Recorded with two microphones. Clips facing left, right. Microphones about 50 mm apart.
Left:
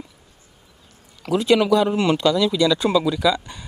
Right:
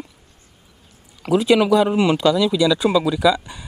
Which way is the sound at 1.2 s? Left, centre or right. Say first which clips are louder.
Right 2 dB; centre.